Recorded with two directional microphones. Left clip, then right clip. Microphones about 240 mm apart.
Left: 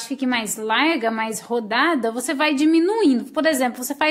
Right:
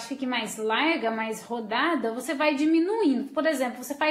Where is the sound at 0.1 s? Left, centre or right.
Left.